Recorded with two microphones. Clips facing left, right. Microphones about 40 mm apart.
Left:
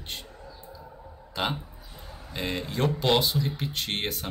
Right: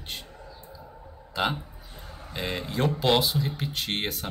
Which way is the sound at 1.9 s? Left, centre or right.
Right.